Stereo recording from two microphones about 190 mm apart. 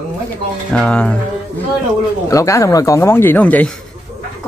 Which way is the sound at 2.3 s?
15° left (ahead or behind).